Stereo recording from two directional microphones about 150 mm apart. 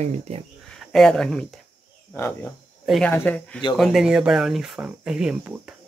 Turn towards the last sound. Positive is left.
turn(degrees=-5)  # may be behind; listen again after turning